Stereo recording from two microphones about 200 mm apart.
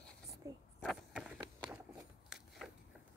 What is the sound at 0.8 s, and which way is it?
Biting, 5° right (ahead or behind).